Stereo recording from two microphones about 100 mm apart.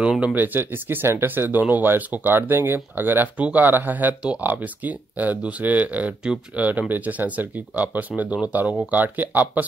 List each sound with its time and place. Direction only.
0.0 s speech: 10° right (ahead or behind)